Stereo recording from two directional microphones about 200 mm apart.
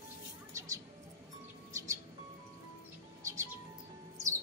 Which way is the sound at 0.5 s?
15° right (ahead or behind).